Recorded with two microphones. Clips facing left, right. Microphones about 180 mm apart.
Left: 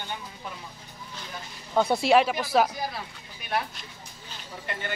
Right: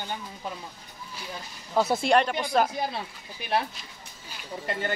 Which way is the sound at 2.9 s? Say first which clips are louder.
Right 3 dB; 30° right (ahead or behind).